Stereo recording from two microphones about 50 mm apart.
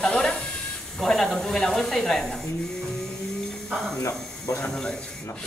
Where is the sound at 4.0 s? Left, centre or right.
Left.